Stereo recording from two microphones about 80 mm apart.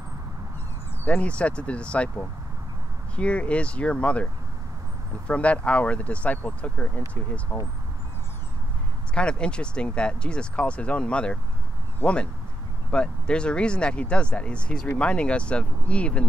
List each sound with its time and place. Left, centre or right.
1.0 s speech: centre
5.3 s speech: centre
9.1 s speech: centre